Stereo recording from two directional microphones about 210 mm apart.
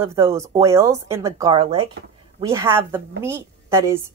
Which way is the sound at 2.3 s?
15° right (ahead or behind).